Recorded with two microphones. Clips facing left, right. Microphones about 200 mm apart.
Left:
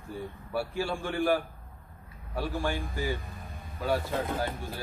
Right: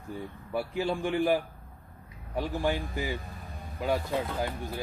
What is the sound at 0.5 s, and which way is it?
A man's voice, 20° right (ahead or behind).